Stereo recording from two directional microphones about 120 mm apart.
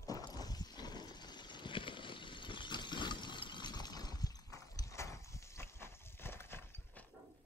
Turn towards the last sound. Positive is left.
turn(degrees=15)  # may be behind; listen again after turning